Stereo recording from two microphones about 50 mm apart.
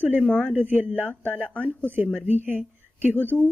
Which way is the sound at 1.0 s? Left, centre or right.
Right.